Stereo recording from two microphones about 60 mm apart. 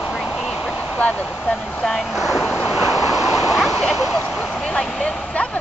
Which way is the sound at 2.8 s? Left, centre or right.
Centre.